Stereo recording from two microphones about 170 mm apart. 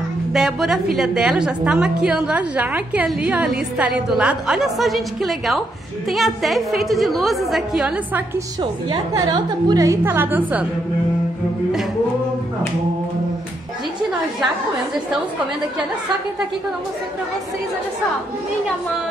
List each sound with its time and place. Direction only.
0.3 s a woman's voice: 5° right (ahead or behind)
8.8 s a woman's voice: 25° right (ahead or behind); by 10.7 s 10° right (ahead or behind)